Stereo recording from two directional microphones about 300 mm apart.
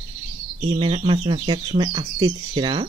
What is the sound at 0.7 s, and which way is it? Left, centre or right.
Speech, centre.